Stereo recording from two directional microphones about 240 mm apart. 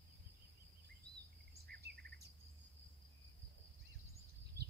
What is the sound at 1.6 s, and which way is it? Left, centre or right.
Insect, right.